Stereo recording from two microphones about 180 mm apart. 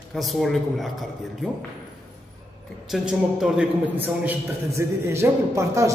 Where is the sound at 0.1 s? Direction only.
Centre (ahead or behind).